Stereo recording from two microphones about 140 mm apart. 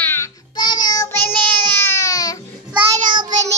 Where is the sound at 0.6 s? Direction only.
30° left (ahead or behind).